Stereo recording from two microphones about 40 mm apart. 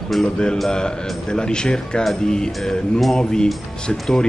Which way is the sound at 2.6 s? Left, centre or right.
Centre.